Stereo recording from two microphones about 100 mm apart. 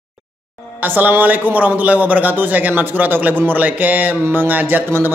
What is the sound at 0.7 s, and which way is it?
A man's voice, 20° right (ahead or behind).